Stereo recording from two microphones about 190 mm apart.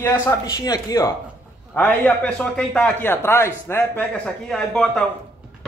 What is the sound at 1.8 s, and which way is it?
A man's voice, 10° left (ahead or behind).